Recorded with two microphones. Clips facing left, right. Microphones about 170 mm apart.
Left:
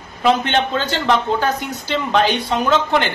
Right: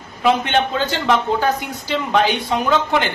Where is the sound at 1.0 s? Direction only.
10° right (ahead or behind).